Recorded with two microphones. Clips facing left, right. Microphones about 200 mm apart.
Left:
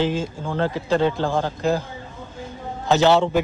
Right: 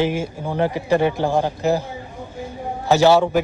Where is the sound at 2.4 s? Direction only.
15° right (ahead or behind).